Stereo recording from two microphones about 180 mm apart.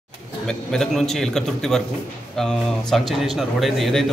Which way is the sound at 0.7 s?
Centre (ahead or behind).